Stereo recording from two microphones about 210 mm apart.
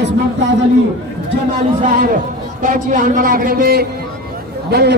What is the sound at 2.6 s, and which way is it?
A man's voice, 40° right (ahead or behind).